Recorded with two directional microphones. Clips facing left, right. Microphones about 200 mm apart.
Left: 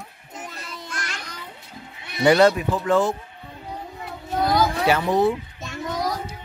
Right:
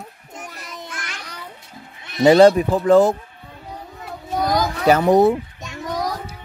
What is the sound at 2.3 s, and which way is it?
Speech, 30° right (ahead or behind).